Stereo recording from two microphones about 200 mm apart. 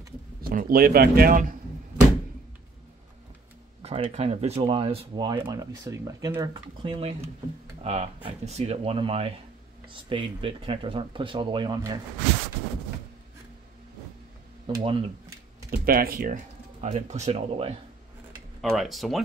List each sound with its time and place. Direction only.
0.4 s speech: 45° right (ahead or behind)
3.8 s speech: 30° right (ahead or behind)
14.7 s speech: 25° right (ahead or behind)
15.7 s speech: 50° right (ahead or behind)
16.8 s speech: 35° right (ahead or behind)
18.6 s speech: centre (ahead or behind)